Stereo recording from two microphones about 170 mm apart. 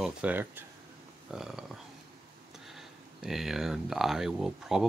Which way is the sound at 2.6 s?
Centre (ahead or behind).